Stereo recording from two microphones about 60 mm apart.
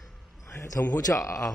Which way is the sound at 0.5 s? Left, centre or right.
Left.